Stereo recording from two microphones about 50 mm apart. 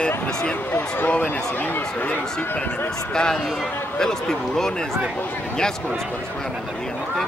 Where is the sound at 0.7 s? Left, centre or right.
Left.